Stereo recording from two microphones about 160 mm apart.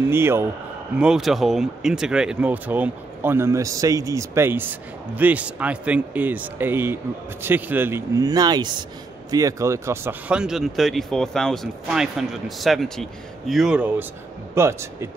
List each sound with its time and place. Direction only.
0.0 s speech: 15° right (ahead or behind)
0.9 s speech: 5° right (ahead or behind)